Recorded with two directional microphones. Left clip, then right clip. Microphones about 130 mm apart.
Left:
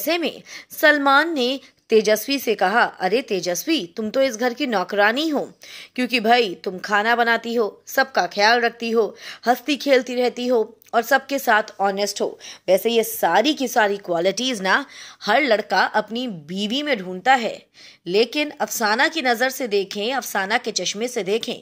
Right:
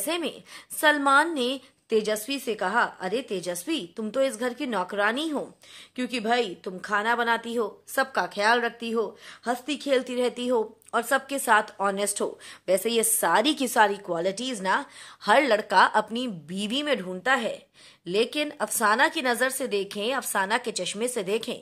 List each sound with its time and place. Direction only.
0.0 s a woman's voice: 30° left (ahead or behind)
10.0 s a woman's voice: 20° left (ahead or behind); by 13.8 s 5° left (ahead or behind)
13.8 s a woman's voice: 20° left (ahead or behind)
15.2 s a woman's voice: 10° left (ahead or behind)